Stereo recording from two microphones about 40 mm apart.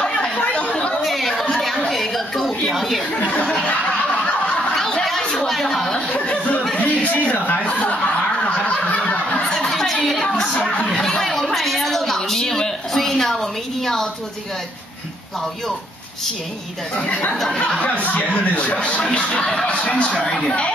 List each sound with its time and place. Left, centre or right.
0.0 s chatter: centre
1.0 s a sound: centre
4.5 s snicker: centre
5.5 s a sound: centre
6.1 s a sound: left
6.8 s chuckle: left
7.7 s snicker: left
9.4 s chatter: centre
10.5 s speech: centre
11.0 s a sound: centre
17.3 s speech: centre
17.7 s speech: left